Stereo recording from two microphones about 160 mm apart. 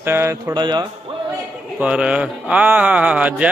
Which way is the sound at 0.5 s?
25° right (ahead or behind).